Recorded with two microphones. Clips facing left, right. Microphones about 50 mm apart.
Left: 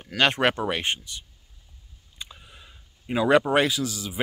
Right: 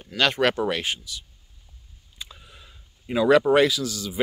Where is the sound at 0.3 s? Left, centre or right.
Left.